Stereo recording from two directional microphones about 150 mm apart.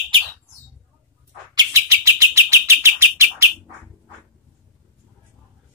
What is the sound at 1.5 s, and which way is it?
Bird, 20° right (ahead or behind).